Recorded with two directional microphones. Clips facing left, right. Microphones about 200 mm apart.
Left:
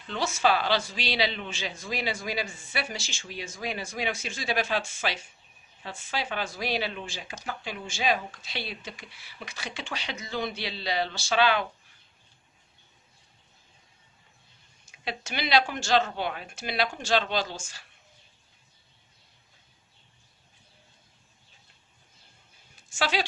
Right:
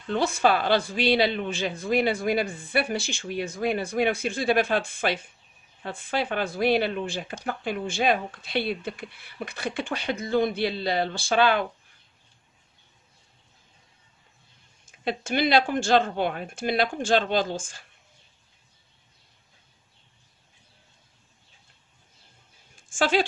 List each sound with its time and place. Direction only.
0.0 s speech: 55° right (ahead or behind)
14.9 s speech: 50° right (ahead or behind)
22.8 s a sound: 50° right (ahead or behind)